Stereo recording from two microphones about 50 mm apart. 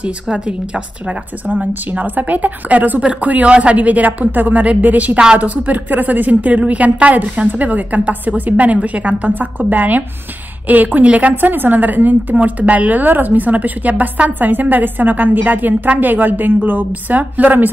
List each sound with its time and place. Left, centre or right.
0.0 s a woman's voice: right
1.4 s a woman's voice: right
3.0 s a woman's voice: right